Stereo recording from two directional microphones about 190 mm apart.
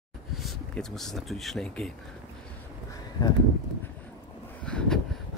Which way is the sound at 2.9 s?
20° left (ahead or behind).